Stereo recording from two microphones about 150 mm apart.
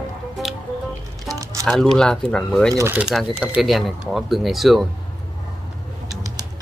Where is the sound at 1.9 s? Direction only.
5° left (ahead or behind).